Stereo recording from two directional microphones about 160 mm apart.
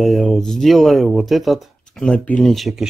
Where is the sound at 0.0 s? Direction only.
Centre (ahead or behind).